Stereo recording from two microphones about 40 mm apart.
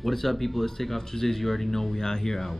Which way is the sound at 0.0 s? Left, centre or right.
Centre.